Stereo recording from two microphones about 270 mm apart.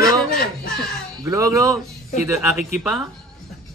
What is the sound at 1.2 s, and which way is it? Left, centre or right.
A man's voice, centre.